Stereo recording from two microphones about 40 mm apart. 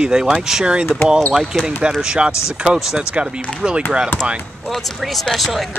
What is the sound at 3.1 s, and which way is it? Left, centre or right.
Speech, right.